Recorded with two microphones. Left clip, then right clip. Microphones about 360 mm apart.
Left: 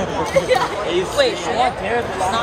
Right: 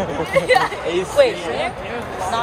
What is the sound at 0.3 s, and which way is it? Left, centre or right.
Speech, centre.